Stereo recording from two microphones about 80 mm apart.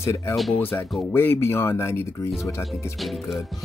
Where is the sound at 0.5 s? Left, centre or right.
Left.